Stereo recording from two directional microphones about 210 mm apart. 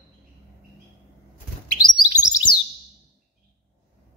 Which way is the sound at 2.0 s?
15° left (ahead or behind).